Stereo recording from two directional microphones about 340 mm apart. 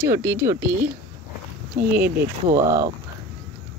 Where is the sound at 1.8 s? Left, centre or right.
Right.